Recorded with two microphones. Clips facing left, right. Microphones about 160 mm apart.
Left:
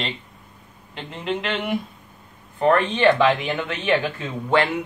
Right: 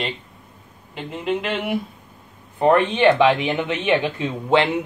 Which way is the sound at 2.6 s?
15° right (ahead or behind).